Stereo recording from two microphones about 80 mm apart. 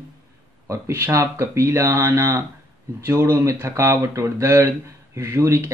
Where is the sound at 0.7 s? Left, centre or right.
Right.